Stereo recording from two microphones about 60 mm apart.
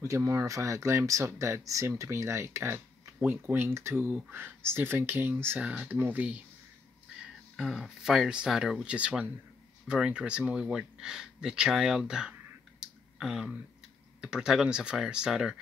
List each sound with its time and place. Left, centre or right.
0.0 s speech: right
2.0 s speech: right
4.1 s speech: right
5.6 s speech: right
5.9 s speech: right
7.5 s speech: centre
8.8 s speech: centre
12.8 s a sound: centre
14.2 s speech: centre